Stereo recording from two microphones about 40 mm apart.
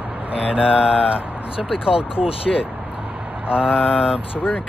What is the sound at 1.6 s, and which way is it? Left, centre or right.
Speech, centre.